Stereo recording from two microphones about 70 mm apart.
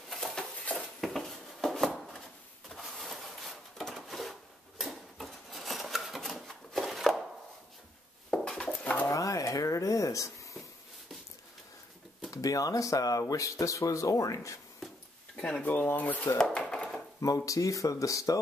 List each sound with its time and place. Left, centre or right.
0.1 s a sound: centre
2.8 s wood: centre
8.3 s dishes: centre
9.0 s a sound: left
12.3 s speech: left
15.3 s speech: centre
15.7 s speech: left
16.3 s dishes: centre
17.5 s speech: left